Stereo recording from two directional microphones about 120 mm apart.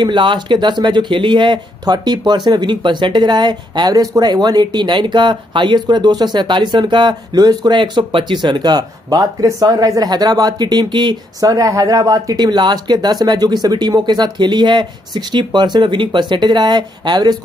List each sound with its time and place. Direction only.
0.0 s speech: 40° right (ahead or behind)